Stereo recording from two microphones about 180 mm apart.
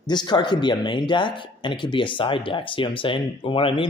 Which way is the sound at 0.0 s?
25° left (ahead or behind).